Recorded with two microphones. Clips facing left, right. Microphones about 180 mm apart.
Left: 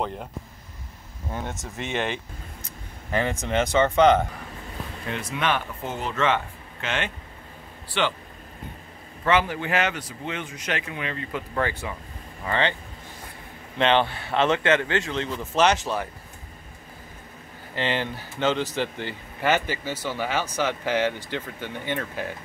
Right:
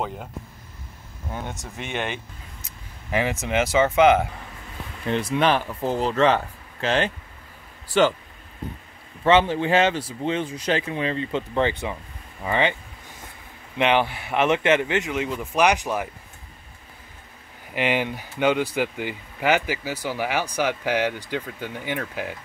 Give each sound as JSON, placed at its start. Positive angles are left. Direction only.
{"t": 0.0, "sound": "speech", "side_deg": 0}
{"t": 1.3, "sound": "speech", "side_deg": 0}
{"t": 5.1, "sound": "speech", "side_deg": -35}
{"t": 9.2, "sound": "speech", "side_deg": -25}
{"t": 13.7, "sound": "speech", "side_deg": -15}
{"t": 17.7, "sound": "speech", "side_deg": -15}